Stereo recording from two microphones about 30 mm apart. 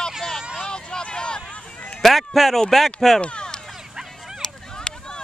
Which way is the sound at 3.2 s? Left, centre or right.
Left.